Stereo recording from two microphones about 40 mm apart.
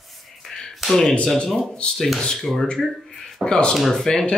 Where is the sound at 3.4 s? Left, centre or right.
Centre.